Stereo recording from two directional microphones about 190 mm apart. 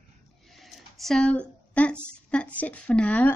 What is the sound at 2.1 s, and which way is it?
Speech, 5° left (ahead or behind).